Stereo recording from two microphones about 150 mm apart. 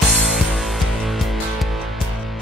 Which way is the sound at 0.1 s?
Centre (ahead or behind).